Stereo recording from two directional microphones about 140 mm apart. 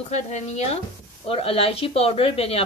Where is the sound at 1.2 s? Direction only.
40° left (ahead or behind).